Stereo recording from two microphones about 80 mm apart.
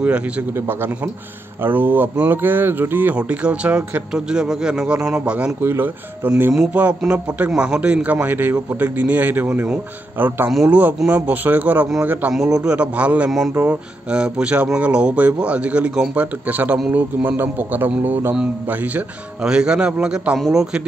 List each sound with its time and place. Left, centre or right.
0.0 s a man's voice: centre
3.2 s speech: centre
5.6 s a man's voice: right
20.3 s speech: centre